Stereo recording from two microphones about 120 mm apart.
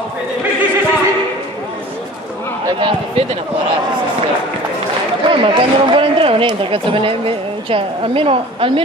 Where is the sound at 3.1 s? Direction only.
55° right (ahead or behind).